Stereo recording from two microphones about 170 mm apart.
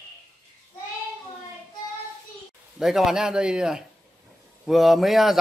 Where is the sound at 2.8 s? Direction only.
Centre (ahead or behind).